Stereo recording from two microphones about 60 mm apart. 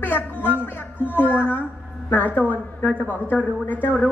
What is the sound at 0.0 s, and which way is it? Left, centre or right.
A woman's voice, left.